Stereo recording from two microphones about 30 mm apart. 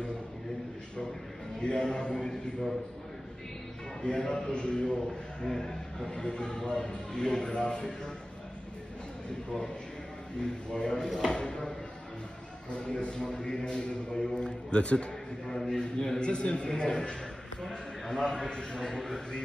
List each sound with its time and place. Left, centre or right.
1.6 s a man's voice: left
4.0 s a man's voice: left
4.3 s a man's voice: left
4.6 s a man's voice: left
5.5 s speech: centre
6.0 s a man's voice: left
10.4 s a man's voice: left
12.7 s a man's voice: left
15.4 s a man's voice: centre
17.6 s a man's voice: centre